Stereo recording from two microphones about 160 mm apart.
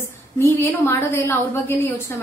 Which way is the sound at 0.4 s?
15° left (ahead or behind).